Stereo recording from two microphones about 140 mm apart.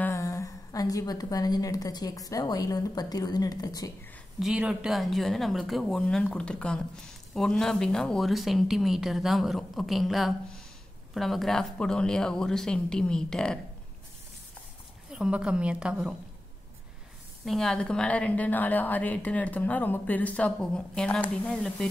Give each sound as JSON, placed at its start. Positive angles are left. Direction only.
{"t": 0.0, "sound": "a woman's voice", "side_deg": 20}
{"t": 4.4, "sound": "speech", "side_deg": -5}
{"t": 15.0, "sound": "a woman's voice", "side_deg": -5}
{"t": 17.5, "sound": "a woman's voice", "side_deg": 5}